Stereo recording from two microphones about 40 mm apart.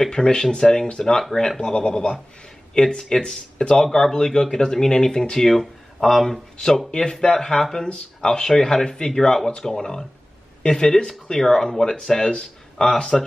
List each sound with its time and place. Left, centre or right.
0.0 s speech: centre
6.9 s speech: centre